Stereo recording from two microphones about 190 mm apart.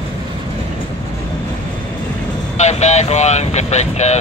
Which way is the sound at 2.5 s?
35° left (ahead or behind).